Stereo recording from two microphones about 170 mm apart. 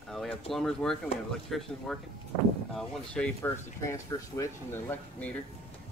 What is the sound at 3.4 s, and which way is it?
Speech, 15° left (ahead or behind).